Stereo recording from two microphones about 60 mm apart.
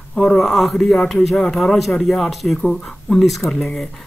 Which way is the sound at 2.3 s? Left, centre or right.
Centre.